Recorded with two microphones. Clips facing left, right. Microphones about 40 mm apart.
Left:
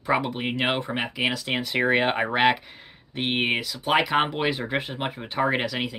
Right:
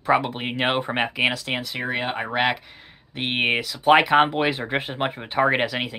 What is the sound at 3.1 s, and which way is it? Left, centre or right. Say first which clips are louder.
Speech: right 2 dB; centre.